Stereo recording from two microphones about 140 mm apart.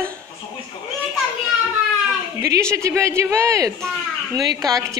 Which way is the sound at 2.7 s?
20° right (ahead or behind).